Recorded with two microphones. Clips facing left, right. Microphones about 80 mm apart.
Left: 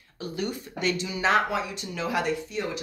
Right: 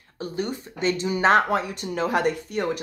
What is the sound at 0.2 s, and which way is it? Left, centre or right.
Speech, right.